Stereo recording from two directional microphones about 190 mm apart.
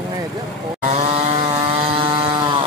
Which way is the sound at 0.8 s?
35° right (ahead or behind).